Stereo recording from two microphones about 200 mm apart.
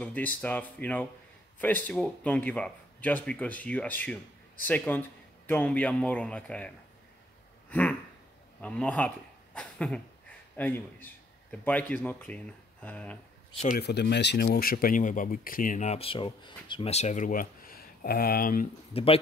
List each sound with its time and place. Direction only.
0.0 s speech: 5° left (ahead or behind)
8.5 s speech: 5° left (ahead or behind)
13.7 s speech: 55° left (ahead or behind)
18.9 s speech: 30° left (ahead or behind)